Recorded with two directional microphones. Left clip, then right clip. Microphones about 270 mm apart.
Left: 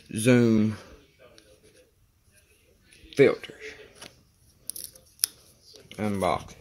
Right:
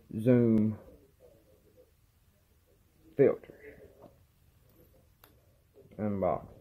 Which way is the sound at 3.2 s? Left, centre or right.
Left.